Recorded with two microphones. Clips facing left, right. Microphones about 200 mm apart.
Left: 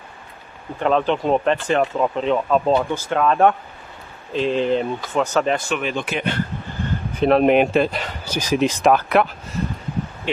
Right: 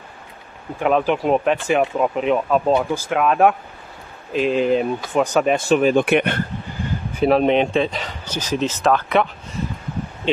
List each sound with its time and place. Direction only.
0.7 s speech: 10° right (ahead or behind)
5.7 s speech: 40° right (ahead or behind)
6.0 s speech: 60° right (ahead or behind)
7.2 s speech: centre (ahead or behind)
10.2 s speech: 20° right (ahead or behind)